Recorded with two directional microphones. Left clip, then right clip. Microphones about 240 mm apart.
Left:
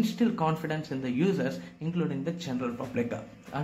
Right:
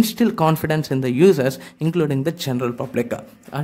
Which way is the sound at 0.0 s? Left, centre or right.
Right.